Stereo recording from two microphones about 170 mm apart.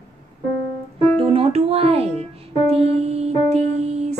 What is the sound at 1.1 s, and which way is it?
Music, 35° right (ahead or behind).